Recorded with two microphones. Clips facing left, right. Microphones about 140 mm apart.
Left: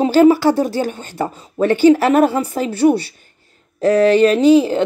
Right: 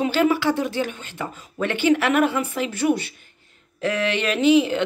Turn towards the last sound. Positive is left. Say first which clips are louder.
# left 6 dB
turn(degrees=35)  # may be behind; listen again after turning